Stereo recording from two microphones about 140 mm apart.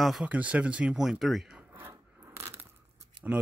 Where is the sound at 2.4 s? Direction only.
15° right (ahead or behind).